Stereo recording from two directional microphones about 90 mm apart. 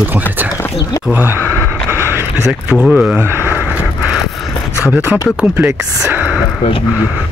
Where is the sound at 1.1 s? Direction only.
25° right (ahead or behind).